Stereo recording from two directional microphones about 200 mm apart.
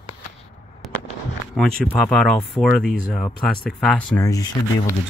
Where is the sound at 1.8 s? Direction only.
Centre (ahead or behind).